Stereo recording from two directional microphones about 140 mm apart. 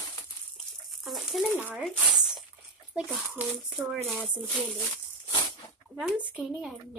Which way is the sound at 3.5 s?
5° right (ahead or behind).